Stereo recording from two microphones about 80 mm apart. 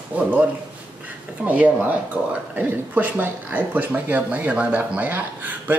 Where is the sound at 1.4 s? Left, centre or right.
Centre.